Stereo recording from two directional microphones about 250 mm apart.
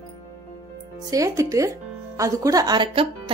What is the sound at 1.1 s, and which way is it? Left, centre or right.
Speech, centre.